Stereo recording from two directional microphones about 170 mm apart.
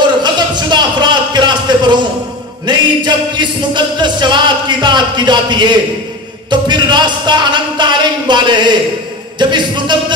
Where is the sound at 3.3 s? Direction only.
25° right (ahead or behind).